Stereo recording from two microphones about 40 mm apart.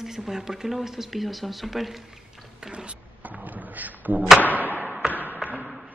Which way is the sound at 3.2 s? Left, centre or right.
Right.